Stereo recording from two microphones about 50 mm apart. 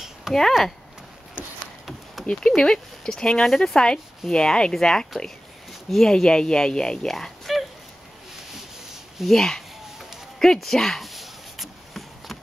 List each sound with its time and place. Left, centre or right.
0.3 s speech: centre
2.2 s speech: centre
9.2 s speech: centre
10.4 s a sound: centre